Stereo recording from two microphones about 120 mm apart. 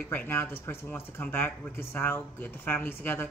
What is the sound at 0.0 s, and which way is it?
Speech, 15° left (ahead or behind).